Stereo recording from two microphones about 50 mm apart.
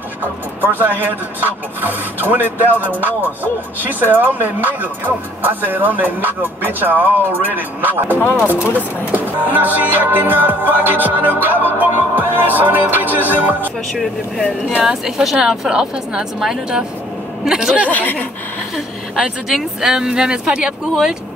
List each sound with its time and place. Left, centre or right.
0.2 s speech: right
14.8 s a woman's voice: centre
17.8 s speech: left
19.1 s a woman's voice: centre